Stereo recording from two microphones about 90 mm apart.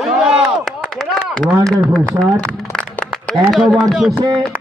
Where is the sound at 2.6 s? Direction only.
5° left (ahead or behind).